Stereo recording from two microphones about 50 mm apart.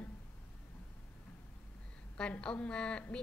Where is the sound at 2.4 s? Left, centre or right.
Left.